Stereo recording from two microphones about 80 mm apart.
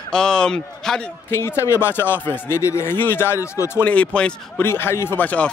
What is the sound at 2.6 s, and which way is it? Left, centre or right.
Speech, left.